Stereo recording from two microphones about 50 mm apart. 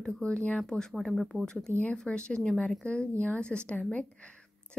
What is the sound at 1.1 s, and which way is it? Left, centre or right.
Speech, centre.